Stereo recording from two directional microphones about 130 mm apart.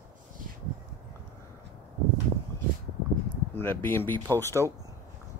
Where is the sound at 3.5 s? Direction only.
15° left (ahead or behind).